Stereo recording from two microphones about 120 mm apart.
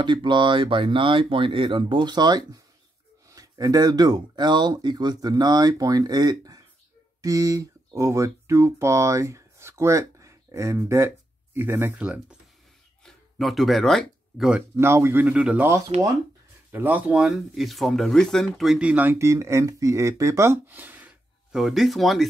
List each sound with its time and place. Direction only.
0.0 s speech: 40° right (ahead or behind); by 12.4 s 10° right (ahead or behind)
13.0 s a sound: centre (ahead or behind)
14.8 s speech: 20° right (ahead or behind)
21.5 s speech: centre (ahead or behind)